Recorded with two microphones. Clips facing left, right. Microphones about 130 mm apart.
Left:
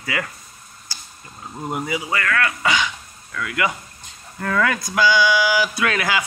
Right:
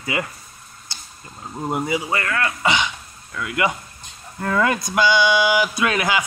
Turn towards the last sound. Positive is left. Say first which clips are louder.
# right 1 dB
turn(degrees=-20)  # may be behind; listen again after turning